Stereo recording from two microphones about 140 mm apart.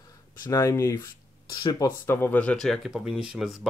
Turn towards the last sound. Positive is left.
turn(degrees=-5)  # may be behind; listen again after turning